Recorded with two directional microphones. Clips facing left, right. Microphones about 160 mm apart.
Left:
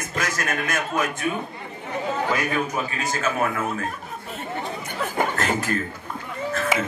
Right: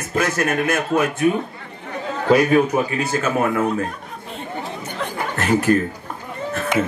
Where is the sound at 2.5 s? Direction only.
20° right (ahead or behind).